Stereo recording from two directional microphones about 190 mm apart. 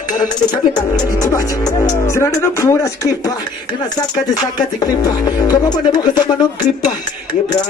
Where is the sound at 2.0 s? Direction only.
15° left (ahead or behind).